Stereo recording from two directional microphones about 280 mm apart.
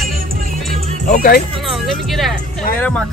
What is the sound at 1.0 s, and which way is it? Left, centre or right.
Speech, left.